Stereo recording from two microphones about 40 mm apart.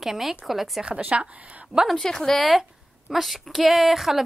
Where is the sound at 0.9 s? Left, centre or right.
Right.